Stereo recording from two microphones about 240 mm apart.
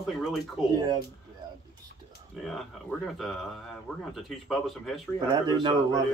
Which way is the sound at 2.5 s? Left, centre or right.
Centre.